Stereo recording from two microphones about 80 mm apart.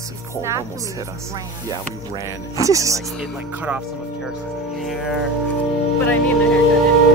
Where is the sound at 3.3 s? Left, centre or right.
Centre.